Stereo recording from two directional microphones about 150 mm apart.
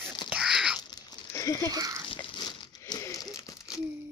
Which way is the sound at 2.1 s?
30° left (ahead or behind).